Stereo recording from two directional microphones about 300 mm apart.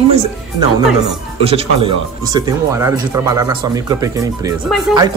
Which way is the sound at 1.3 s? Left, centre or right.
Centre.